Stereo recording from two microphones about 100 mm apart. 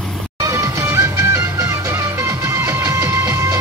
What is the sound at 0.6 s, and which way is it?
Music, 30° right (ahead or behind).